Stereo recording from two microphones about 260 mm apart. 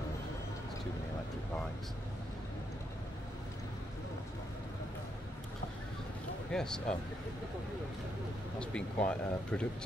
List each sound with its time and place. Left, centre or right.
6.5 s speech: centre
8.5 s speech: centre